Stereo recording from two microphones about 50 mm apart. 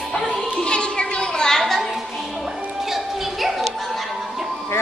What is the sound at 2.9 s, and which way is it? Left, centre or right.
Music, centre.